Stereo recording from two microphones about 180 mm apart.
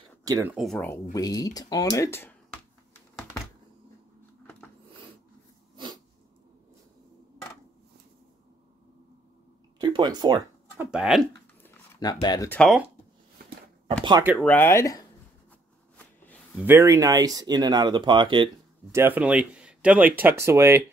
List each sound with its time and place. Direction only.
0.2 s speech: 15° right (ahead or behind)
0.7 s speech: 5° left (ahead or behind)
1.1 s speech: 20° left (ahead or behind)
9.8 s speech: 25° right (ahead or behind)
10.8 s speech: 5° right (ahead or behind)
11.6 s a sound: 15° left (ahead or behind)
12.4 s speech: 5° left (ahead or behind)
14.4 s speech: 10° left (ahead or behind)
16.6 s speech: 15° right (ahead or behind)
18.9 s speech: 15° right (ahead or behind)